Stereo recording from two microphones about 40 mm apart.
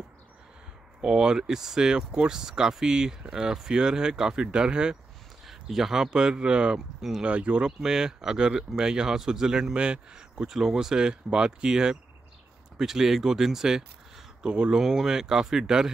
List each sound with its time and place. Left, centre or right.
1.0 s speech: right
5.5 s speech: centre; by 6.8 s right
7.0 s speech: centre
7.2 s speech: right
7.6 s speech: centre
9.8 s speech: right
14.4 s speech: right
14.8 s speech: centre